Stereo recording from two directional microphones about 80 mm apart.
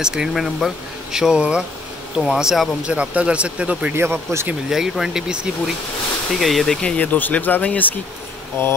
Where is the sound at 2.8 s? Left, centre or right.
Centre.